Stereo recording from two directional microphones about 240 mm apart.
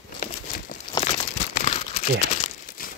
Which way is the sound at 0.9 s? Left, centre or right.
Left.